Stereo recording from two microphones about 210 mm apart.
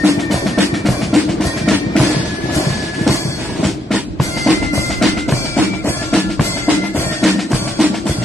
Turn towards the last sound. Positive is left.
turn(degrees=0)  # may be behind; listen again after turning